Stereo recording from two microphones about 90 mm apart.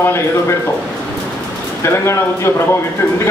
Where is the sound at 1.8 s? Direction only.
30° left (ahead or behind).